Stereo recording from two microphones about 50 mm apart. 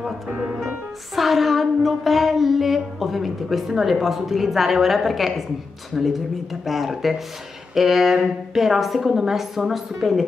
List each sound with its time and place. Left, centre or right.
0.3 s speech: right
0.6 s music: centre
5.9 s a woman's voice: centre